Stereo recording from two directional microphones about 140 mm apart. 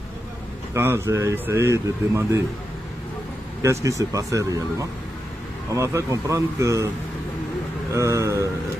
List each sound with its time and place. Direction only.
0.7 s speech: 15° right (ahead or behind)
3.8 s speech: 25° right (ahead or behind)
7.9 s speech: 20° right (ahead or behind)